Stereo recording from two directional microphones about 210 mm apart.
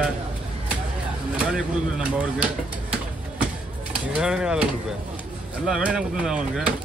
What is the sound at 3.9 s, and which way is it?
Speech, 5° right (ahead or behind).